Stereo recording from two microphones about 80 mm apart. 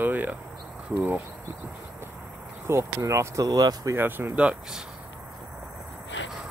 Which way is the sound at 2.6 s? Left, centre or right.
Right.